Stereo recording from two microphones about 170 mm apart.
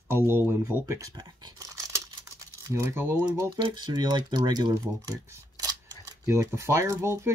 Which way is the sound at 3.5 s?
25° right (ahead or behind).